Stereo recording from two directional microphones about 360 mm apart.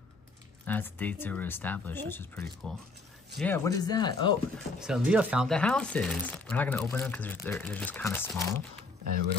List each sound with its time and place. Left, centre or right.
0.7 s speech: centre
4.7 s speech: centre
9.0 s speech: right